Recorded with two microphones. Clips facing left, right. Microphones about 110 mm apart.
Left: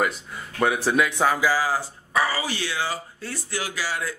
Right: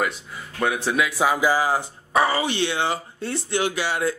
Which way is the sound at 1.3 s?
20° right (ahead or behind).